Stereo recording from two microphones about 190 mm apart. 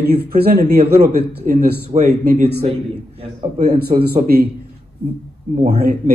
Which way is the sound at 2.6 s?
30° right (ahead or behind).